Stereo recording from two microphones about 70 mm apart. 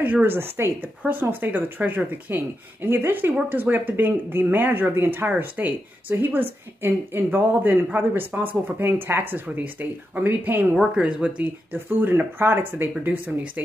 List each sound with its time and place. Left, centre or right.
0.0 s a woman's voice: right
11.0 s a woman's voice: centre
11.7 s a woman's voice: right